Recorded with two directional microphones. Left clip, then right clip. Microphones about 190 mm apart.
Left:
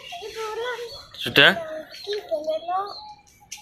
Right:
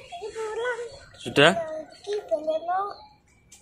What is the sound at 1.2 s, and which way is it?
Speech, 5° right (ahead or behind).